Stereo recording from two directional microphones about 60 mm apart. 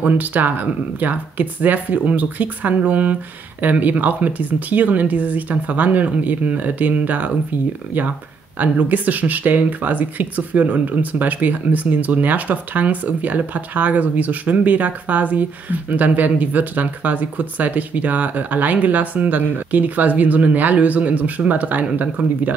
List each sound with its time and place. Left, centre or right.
0.0 s speech: right
8.5 s speech: right